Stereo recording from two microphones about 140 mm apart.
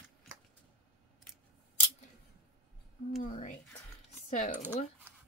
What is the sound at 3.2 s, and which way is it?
Speech, 60° left (ahead or behind).